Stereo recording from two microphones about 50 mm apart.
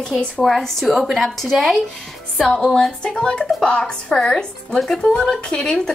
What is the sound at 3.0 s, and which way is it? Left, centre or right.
A woman's voice, centre.